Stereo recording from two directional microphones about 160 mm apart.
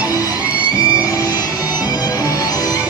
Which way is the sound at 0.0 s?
25° left (ahead or behind).